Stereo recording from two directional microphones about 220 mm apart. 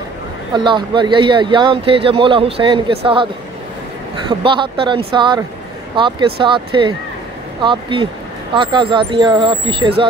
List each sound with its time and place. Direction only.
0.7 s a man's voice: 20° right (ahead or behind)
4.3 s a man's voice: 20° right (ahead or behind)